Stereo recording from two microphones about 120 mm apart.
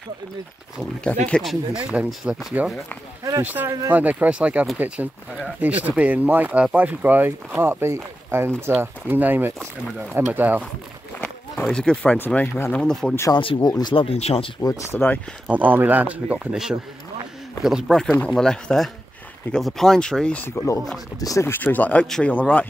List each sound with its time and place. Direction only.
1.2 s speech: 5° left (ahead or behind); by 10.6 s 15° right (ahead or behind)
11.1 s run: 10° left (ahead or behind)
11.7 s speech: 10° left (ahead or behind)
13.3 s speech: 45° left (ahead or behind)
13.9 s speech: 55° left (ahead or behind)
14.6 s speech: 30° left (ahead or behind)
15.4 s speech: 15° right (ahead or behind); by 20.4 s 5° left (ahead or behind)
20.4 s speech: 25° left (ahead or behind)